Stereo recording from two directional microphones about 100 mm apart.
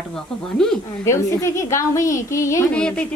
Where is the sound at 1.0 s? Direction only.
30° left (ahead or behind).